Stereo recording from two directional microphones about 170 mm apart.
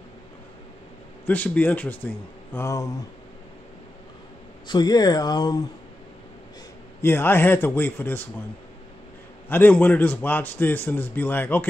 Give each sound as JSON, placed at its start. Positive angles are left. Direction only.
{"t": 1.2, "sound": "a man's voice", "side_deg": 10}
{"t": 4.6, "sound": "speech", "side_deg": 25}
{"t": 7.0, "sound": "a man's voice", "side_deg": 10}
{"t": 9.5, "sound": "a man's voice", "side_deg": 10}